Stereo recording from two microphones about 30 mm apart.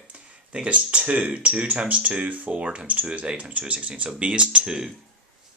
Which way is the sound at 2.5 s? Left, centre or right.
Right.